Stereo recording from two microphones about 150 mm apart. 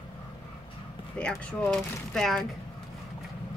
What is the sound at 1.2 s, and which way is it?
Speech, 5° left (ahead or behind).